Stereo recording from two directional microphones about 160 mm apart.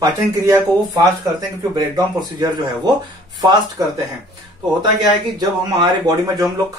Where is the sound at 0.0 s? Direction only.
20° right (ahead or behind).